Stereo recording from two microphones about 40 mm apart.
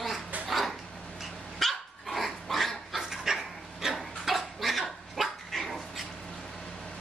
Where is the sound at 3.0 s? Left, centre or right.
Centre.